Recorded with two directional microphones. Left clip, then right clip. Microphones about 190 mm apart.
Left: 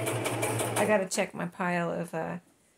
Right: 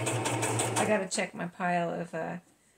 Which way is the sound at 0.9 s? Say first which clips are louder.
Left 2 dB; 40° left (ahead or behind).